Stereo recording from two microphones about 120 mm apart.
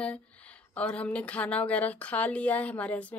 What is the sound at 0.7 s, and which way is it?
Speech, 10° left (ahead or behind).